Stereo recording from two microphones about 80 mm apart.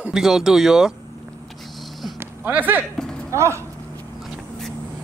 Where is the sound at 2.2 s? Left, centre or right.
Right.